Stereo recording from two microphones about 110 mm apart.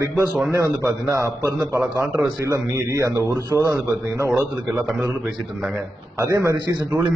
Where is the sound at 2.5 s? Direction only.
30° right (ahead or behind).